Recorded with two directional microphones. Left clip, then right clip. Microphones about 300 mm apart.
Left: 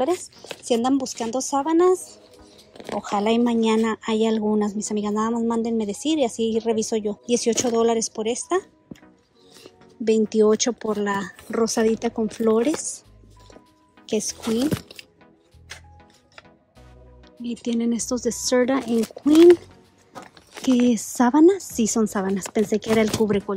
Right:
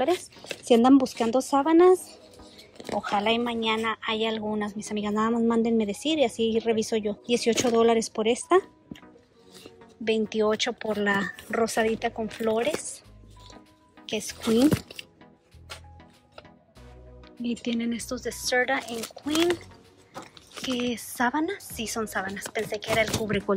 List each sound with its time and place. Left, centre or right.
0.7 s speech: centre
3.0 s speech: centre
14.1 s speech: centre
14.4 s speech: centre
17.4 s speech: centre